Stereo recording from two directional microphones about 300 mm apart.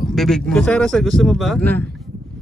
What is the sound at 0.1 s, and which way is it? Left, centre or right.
Speech, centre.